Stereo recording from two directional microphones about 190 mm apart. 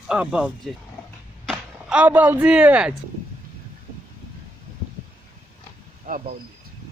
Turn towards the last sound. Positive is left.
turn(degrees=-40)  # may be behind; listen again after turning